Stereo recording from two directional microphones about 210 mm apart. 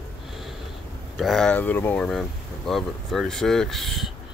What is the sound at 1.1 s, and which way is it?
Speech, centre (ahead or behind).